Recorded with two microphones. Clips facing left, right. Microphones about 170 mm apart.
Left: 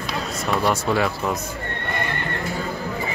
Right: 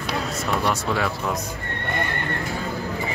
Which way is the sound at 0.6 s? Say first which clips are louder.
Left 5 dB; 5° left (ahead or behind).